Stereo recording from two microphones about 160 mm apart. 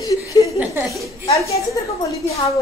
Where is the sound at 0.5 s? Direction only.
15° right (ahead or behind).